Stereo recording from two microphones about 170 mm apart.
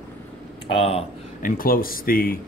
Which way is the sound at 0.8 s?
35° left (ahead or behind).